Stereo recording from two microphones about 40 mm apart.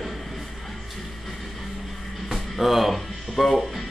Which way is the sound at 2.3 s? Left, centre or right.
Centre.